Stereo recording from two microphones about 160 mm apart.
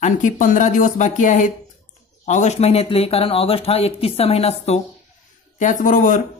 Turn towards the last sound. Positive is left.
turn(degrees=55)  # may be behind; listen again after turning